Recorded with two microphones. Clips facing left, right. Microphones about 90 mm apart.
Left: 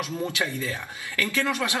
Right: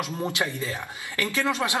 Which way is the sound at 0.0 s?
20° right (ahead or behind).